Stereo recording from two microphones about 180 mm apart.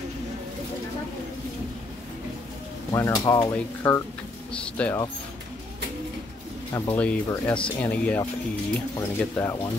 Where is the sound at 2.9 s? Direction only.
20° left (ahead or behind).